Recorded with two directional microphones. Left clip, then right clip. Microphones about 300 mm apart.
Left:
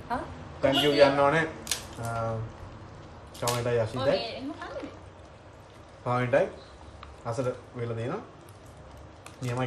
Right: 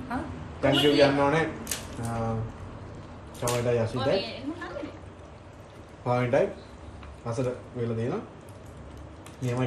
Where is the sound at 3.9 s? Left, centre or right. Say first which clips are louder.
Even; left.